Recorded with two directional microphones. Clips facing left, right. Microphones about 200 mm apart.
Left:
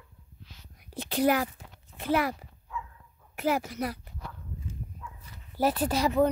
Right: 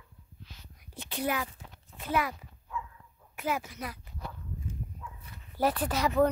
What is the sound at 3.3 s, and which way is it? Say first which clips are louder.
Speech: left 5 dB; 70° left (ahead or behind).